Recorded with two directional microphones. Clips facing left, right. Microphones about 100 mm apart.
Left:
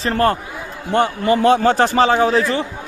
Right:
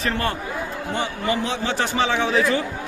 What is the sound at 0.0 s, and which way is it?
A man's voice, 45° left (ahead or behind).